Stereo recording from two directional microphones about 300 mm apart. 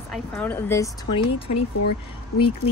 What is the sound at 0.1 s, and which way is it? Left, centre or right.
Speech, centre.